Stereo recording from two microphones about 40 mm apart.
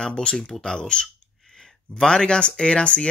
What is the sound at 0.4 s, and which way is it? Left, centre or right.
Speech, centre.